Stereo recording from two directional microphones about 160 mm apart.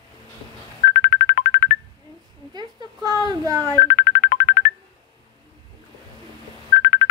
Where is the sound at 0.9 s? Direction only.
45° left (ahead or behind).